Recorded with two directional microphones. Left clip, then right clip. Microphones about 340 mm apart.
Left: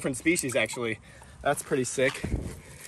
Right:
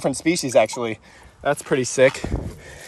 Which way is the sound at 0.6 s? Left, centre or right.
Centre.